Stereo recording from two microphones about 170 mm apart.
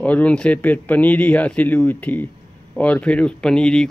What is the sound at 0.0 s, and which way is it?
Speech, 10° left (ahead or behind).